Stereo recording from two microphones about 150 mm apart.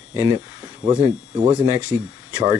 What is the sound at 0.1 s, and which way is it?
Speech, 25° right (ahead or behind).